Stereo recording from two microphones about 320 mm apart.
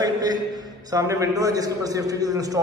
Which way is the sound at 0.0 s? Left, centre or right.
Centre.